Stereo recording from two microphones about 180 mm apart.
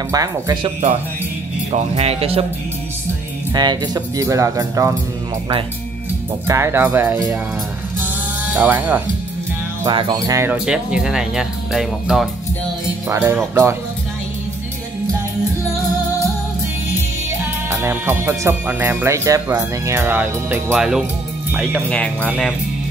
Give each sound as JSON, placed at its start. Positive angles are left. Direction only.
{"t": 0.1, "sound": "speech", "side_deg": -20}
{"t": 2.0, "sound": "speech", "side_deg": -35}
{"t": 3.5, "sound": "speech", "side_deg": -20}
{"t": 6.4, "sound": "speech", "side_deg": -15}
{"t": 8.0, "sound": "music", "side_deg": -10}
{"t": 9.8, "sound": "speech", "side_deg": -25}
{"t": 13.1, "sound": "speech", "side_deg": -15}
{"t": 17.6, "sound": "speech", "side_deg": -15}
{"t": 21.8, "sound": "speech", "side_deg": 5}
{"t": 22.2, "sound": "speech", "side_deg": -10}